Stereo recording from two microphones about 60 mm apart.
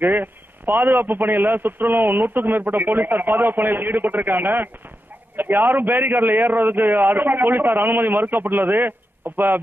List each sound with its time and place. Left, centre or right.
0.0 s a man's voice: right